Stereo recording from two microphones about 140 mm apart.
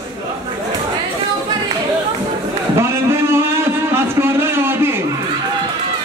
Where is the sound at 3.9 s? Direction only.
15° right (ahead or behind).